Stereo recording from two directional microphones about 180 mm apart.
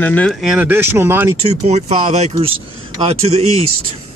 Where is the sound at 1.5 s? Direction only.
35° right (ahead or behind).